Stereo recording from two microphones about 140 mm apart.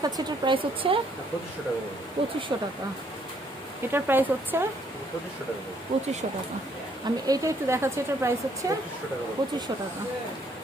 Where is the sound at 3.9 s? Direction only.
15° right (ahead or behind).